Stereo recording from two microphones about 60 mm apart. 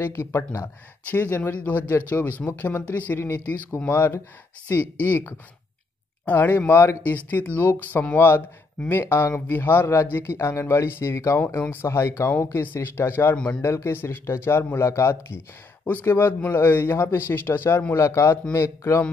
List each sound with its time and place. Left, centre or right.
0.0 s speech: left
0.4 s speech: left
1.0 s speech: left
12.6 s speech: left
15.8 s speech: left
17.9 s speech: left